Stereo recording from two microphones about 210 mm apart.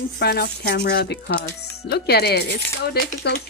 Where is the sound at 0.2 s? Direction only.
50° left (ahead or behind).